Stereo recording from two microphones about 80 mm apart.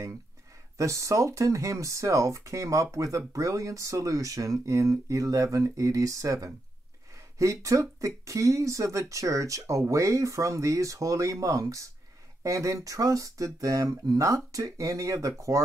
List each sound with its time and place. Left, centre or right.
0.7 s speech: right